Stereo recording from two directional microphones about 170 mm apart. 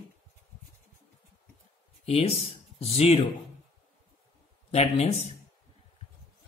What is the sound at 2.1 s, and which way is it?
Speech, 35° left (ahead or behind).